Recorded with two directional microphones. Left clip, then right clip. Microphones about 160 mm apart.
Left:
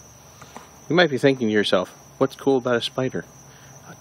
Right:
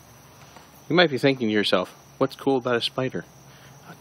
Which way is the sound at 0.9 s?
Centre (ahead or behind).